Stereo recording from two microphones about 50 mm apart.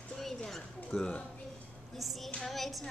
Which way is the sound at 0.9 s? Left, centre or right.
Left.